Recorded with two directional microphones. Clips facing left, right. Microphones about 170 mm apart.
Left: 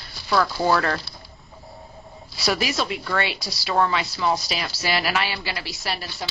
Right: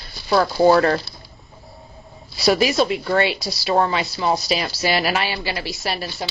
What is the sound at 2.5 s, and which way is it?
Speech, 20° right (ahead or behind).